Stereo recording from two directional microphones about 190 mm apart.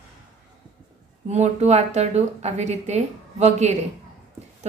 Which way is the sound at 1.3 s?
35° right (ahead or behind).